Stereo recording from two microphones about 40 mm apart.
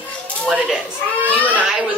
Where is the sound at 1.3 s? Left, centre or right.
Left.